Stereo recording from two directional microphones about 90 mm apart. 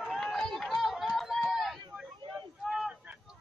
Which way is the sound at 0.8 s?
Centre (ahead or behind).